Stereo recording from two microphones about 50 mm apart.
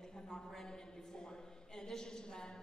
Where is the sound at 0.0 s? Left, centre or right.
Centre.